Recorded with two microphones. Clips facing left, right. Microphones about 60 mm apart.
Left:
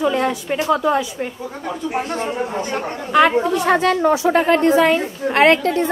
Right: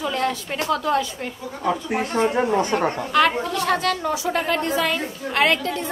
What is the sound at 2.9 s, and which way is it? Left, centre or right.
A woman's voice, left.